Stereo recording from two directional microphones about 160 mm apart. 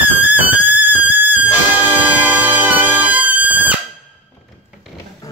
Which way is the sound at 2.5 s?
10° right (ahead or behind).